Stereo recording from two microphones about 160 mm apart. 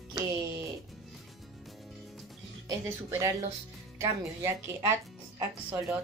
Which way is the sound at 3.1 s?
15° right (ahead or behind).